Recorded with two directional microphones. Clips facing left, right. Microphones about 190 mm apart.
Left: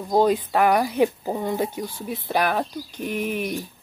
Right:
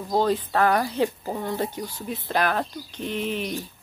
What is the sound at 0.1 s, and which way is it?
Speech, 15° left (ahead or behind).